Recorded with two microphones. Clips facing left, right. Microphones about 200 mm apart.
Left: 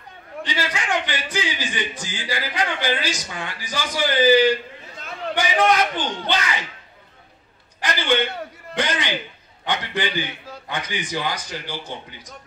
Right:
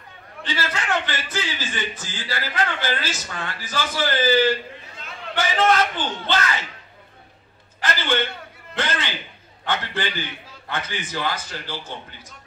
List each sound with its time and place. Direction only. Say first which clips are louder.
0.4 s a man's voice: left 1 dB; 15° left (ahead or behind)
7.8 s a man's voice: left 2 dB; 15° left (ahead or behind)